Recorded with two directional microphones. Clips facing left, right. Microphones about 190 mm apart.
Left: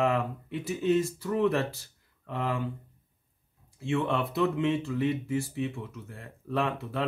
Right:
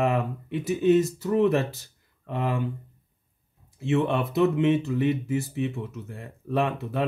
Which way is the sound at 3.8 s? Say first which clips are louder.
Right 4 dB; 20° right (ahead or behind).